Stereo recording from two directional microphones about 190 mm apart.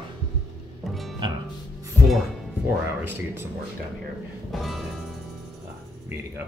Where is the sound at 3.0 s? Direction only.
10° right (ahead or behind).